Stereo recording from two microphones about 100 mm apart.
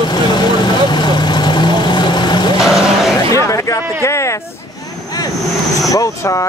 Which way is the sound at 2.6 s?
Centre (ahead or behind).